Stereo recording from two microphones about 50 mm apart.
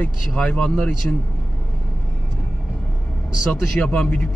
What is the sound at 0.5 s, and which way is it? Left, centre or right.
Speech, centre.